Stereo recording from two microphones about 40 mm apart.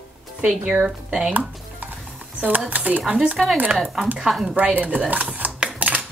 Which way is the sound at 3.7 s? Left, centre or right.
Centre.